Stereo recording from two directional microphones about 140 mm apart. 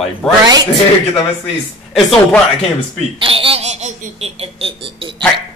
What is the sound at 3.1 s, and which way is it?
Speech, 40° right (ahead or behind).